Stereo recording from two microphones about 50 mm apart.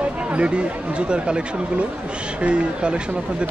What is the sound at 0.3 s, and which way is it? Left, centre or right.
Speech, right.